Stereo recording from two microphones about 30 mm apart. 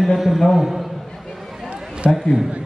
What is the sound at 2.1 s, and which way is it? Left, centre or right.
Speech, centre.